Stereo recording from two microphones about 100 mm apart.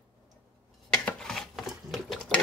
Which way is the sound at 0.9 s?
5° left (ahead or behind).